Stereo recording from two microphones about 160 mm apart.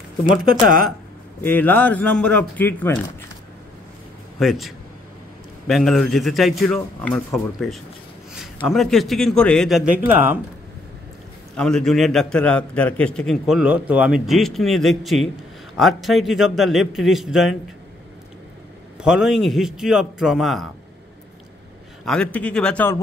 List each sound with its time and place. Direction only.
0.5 s speech: 60° right (ahead or behind)
1.4 s speech: 10° left (ahead or behind)
4.4 s a man's voice: centre (ahead or behind)
8.3 s a man's voice: centre (ahead or behind)
10.0 s speech: 10° right (ahead or behind)
11.5 s a man's voice: 5° left (ahead or behind)
18.9 s a man's voice: 5° right (ahead or behind)
22.0 s speech: 5° left (ahead or behind)